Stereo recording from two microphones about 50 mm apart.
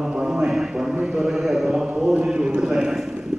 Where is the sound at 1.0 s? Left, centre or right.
Centre.